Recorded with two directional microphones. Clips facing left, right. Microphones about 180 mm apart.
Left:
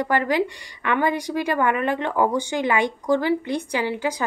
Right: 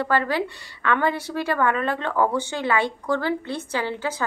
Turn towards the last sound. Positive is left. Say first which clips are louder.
# left 2 dB
turn(degrees=15)  # may be behind; listen again after turning